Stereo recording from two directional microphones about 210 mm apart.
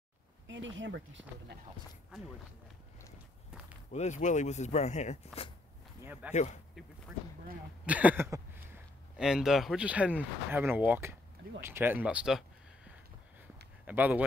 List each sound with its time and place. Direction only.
0.5 s speech: 65° right (ahead or behind)
3.9 s speech: 35° left (ahead or behind)
7.8 s speech: 5° right (ahead or behind)